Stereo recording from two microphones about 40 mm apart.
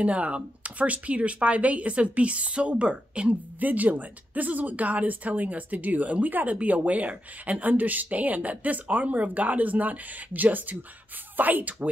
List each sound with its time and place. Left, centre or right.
0.0 s a woman's voice: right
3.5 s a woman's voice: right